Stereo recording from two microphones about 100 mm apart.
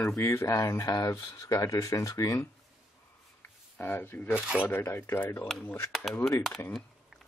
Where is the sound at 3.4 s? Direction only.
20° left (ahead or behind).